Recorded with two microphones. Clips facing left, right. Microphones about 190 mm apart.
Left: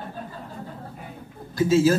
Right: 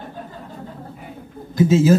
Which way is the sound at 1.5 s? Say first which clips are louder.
Right 3 dB; 20° right (ahead or behind).